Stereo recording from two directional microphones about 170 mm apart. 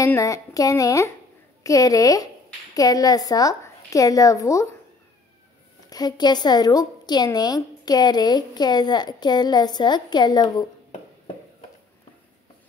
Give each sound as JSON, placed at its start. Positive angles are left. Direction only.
{"t": 0.0, "sound": "a woman's voice", "side_deg": 20}
{"t": 5.9, "sound": "a woman's voice", "side_deg": 25}